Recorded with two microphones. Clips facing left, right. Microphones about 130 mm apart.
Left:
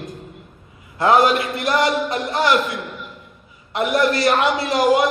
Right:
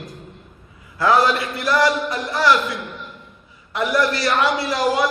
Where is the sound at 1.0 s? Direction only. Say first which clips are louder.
Left 2 dB; 25° left (ahead or behind).